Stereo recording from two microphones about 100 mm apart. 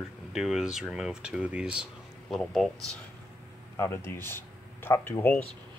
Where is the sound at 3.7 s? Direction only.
25° left (ahead or behind).